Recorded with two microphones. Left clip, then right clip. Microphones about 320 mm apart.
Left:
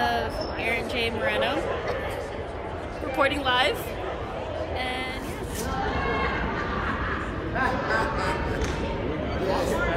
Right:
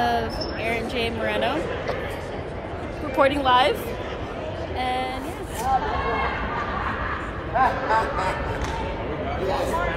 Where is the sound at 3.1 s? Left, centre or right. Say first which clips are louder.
Right 5 dB; centre.